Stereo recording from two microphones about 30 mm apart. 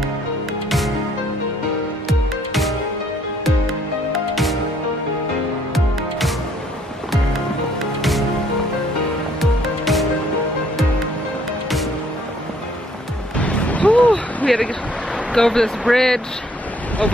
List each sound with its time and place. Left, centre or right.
0.7 s music: centre
2.0 s music: centre
7.8 s music: centre
9.4 s music: centre
13.7 s a sound: left
15.3 s speech: centre